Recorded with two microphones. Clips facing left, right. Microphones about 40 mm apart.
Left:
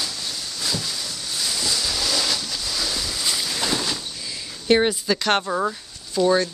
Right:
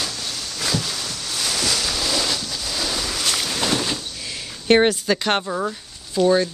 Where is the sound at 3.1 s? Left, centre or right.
Right.